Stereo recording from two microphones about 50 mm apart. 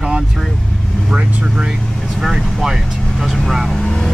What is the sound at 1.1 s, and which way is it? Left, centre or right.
Speech, right.